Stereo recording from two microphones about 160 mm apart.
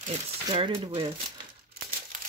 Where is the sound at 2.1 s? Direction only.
55° right (ahead or behind).